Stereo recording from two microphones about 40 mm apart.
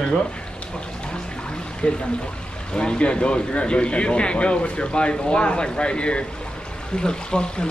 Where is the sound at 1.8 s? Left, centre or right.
Left.